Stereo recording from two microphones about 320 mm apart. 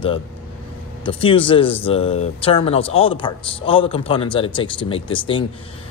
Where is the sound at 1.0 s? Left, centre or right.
Centre.